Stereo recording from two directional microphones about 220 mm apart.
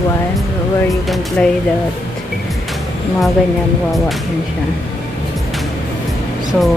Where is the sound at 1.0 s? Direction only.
Centre (ahead or behind).